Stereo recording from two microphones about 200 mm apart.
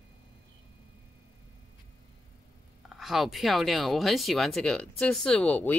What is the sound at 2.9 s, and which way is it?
Speech, centre (ahead or behind).